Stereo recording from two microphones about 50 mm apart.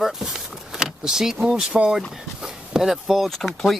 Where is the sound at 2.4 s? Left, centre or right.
Centre.